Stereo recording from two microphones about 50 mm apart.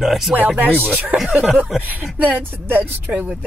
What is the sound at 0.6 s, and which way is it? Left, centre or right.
Speech, right.